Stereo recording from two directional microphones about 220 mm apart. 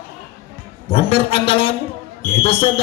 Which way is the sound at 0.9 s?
25° left (ahead or behind).